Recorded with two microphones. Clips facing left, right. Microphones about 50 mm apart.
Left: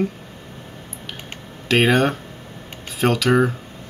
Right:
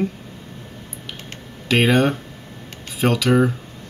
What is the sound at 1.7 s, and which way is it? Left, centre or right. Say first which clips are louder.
Speech: even; centre.